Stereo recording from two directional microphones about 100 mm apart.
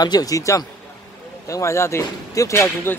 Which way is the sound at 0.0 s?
40° left (ahead or behind).